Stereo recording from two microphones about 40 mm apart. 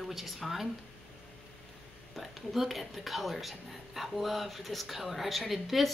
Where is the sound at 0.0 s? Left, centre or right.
Centre.